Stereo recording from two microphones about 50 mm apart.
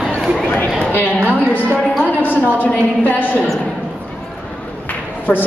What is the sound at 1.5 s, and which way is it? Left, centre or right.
A woman's voice, left.